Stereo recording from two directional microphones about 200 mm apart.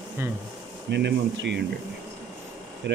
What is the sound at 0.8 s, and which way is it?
Speech, 60° right (ahead or behind).